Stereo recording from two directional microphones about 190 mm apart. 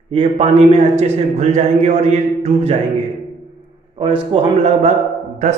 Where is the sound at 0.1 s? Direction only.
30° right (ahead or behind).